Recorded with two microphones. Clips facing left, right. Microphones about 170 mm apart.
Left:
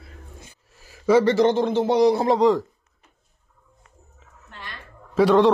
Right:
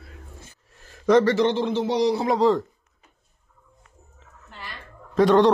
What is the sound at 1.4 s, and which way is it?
Speech, 45° left (ahead or behind).